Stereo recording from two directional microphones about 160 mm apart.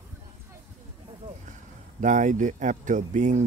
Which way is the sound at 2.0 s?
50° right (ahead or behind).